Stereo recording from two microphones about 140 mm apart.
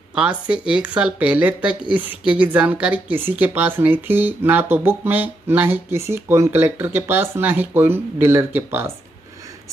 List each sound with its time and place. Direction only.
0.1 s speech: 5° right (ahead or behind)